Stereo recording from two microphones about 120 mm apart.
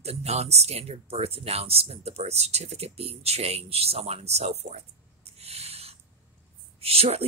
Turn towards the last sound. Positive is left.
turn(degrees=-55)  # may be behind; listen again after turning